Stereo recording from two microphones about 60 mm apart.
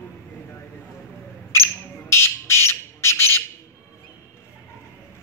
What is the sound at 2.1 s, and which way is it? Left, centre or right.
Squawk, left.